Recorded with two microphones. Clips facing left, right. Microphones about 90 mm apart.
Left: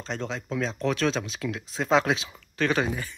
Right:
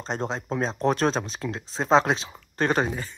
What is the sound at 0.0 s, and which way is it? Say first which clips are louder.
Speech: right 3 dB; 40° right (ahead or behind).